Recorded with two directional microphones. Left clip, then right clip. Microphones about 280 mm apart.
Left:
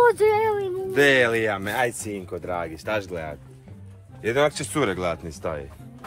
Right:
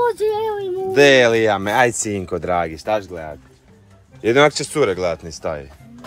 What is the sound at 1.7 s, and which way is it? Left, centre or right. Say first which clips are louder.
Speech: right 9 dB; right.